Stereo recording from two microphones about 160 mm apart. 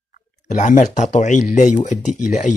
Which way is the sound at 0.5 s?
50° left (ahead or behind).